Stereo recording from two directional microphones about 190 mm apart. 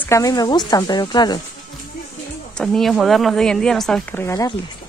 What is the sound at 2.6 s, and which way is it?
Speech, centre (ahead or behind).